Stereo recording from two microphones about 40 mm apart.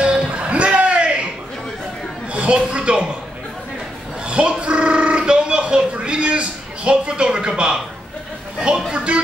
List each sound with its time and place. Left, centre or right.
0.0 s music: right
2.5 s speech: right
4.3 s a sound: right
8.9 s music: right